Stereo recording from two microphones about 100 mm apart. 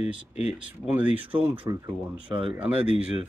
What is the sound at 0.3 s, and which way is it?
Speech, 90° left.